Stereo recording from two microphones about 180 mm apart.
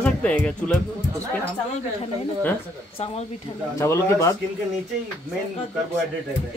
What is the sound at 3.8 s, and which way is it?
Speech, 15° left (ahead or behind).